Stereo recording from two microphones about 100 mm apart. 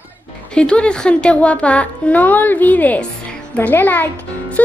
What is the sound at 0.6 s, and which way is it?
A child's voice, 10° left (ahead or behind).